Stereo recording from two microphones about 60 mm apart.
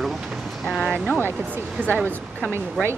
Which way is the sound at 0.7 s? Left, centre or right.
Centre.